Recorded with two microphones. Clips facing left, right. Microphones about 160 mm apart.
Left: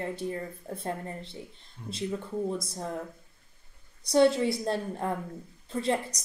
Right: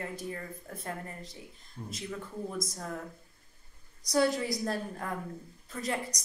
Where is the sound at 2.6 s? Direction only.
30° left (ahead or behind).